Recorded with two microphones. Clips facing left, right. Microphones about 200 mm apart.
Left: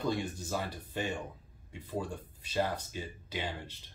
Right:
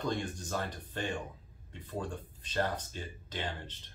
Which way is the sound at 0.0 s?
10° left (ahead or behind).